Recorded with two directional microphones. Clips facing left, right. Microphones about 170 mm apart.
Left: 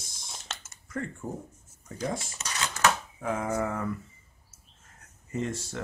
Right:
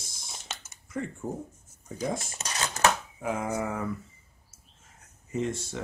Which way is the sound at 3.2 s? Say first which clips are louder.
Left 1 dB; 5° right (ahead or behind).